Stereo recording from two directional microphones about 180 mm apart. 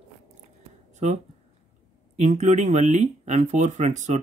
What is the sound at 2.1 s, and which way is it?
Speech, 40° right (ahead or behind).